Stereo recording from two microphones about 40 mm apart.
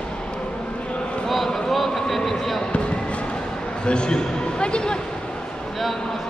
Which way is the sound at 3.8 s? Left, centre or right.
Left.